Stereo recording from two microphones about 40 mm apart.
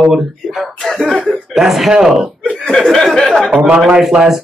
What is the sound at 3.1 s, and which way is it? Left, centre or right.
Speech, centre.